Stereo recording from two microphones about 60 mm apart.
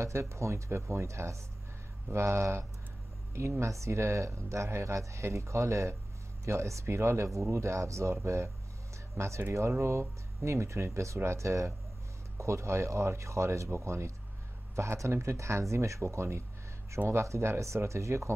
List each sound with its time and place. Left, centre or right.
0.0 s speech: right